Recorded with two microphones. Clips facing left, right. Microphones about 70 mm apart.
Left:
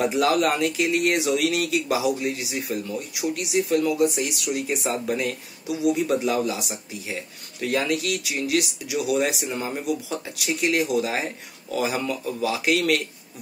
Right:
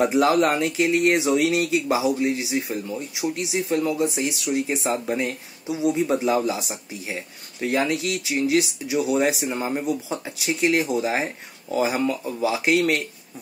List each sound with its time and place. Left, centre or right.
0.0 s speech: right